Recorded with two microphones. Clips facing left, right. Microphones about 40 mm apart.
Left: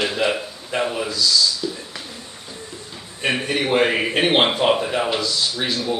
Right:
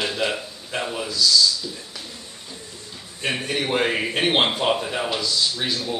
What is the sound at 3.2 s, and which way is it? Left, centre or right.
A man's voice, centre.